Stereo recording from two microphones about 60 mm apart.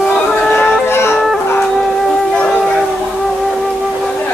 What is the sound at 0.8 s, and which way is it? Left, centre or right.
Music, left.